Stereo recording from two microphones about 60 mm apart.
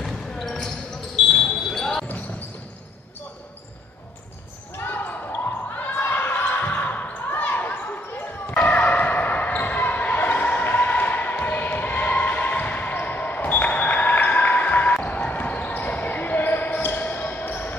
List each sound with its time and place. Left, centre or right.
0.0 s basketball bounce: centre
4.7 s basketball bounce: left
8.5 s basketball bounce: left